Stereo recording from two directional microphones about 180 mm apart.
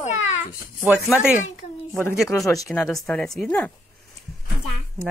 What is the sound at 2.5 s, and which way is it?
Speech, 20° left (ahead or behind).